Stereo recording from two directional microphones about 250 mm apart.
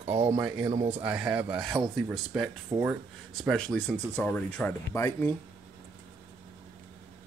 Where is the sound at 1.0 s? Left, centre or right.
Centre.